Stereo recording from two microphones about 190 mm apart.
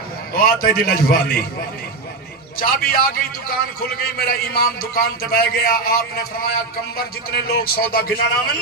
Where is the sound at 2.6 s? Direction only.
50° left (ahead or behind).